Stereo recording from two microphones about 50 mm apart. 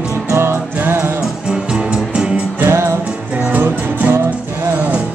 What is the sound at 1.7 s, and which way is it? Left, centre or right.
Music, centre.